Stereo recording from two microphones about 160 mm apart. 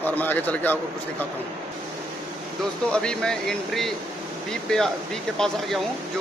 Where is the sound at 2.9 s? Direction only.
5° left (ahead or behind).